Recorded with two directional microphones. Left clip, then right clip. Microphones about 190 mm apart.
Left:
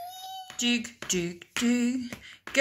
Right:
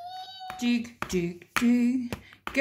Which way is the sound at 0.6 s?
Centre (ahead or behind).